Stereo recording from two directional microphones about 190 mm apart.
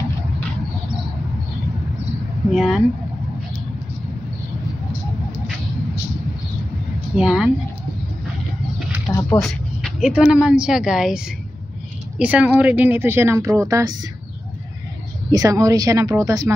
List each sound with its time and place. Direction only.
2.5 s a woman's voice: centre (ahead or behind)
7.2 s a woman's voice: 5° right (ahead or behind)
9.1 s a sound: 15° left (ahead or behind)
9.4 s speech: centre (ahead or behind); by 13.9 s 15° right (ahead or behind)
15.3 s speech: 20° right (ahead or behind)